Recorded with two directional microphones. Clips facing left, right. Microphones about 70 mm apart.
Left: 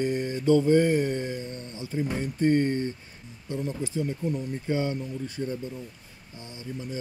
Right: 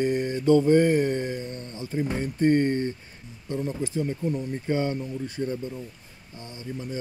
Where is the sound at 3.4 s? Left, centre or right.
Right.